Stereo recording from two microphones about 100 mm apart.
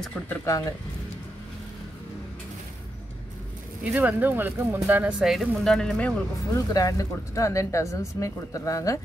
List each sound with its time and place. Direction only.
0.0 s speech: 5° left (ahead or behind)
0.5 s speech: 30° left (ahead or behind)
3.8 s speech: 15° right (ahead or behind)
5.2 s speech: centre (ahead or behind)
6.5 s speech: 35° left (ahead or behind)